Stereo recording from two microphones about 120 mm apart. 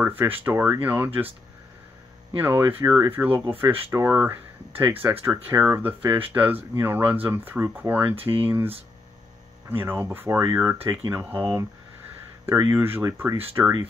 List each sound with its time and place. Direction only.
0.0 s speech: 15° right (ahead or behind)
2.4 s speech: 15° right (ahead or behind)